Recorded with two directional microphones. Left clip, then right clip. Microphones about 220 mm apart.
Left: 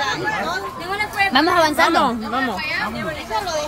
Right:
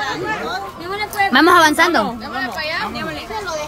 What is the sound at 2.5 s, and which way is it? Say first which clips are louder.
Speech: right 1 dB; 35° right (ahead or behind).